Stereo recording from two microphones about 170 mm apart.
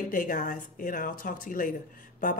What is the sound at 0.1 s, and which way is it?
A woman's voice, 55° left (ahead or behind).